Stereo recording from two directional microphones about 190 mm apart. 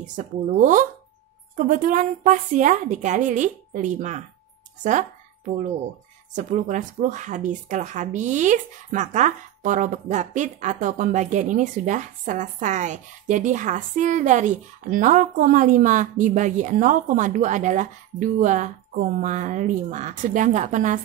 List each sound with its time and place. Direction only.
0.0 s speech: 40° right (ahead or behind)